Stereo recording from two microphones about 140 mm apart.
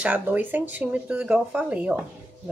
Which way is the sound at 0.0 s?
10° right (ahead or behind).